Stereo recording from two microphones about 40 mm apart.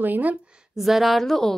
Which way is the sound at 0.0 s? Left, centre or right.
Right.